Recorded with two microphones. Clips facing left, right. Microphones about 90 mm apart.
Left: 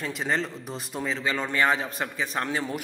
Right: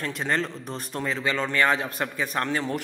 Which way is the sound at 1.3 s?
15° left (ahead or behind).